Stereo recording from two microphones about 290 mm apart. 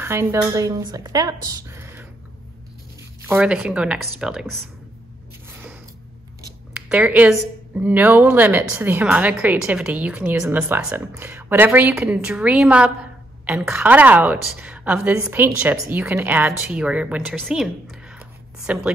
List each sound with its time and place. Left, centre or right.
0.0 s speech: centre
3.3 s speech: centre
6.4 s speech: centre